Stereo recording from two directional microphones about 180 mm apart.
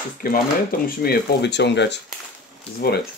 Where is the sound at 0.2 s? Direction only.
55° left (ahead or behind); by 2.0 s 75° left (ahead or behind).